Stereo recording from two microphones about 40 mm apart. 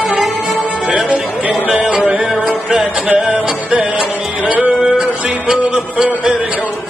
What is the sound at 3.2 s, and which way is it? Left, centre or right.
Music, right.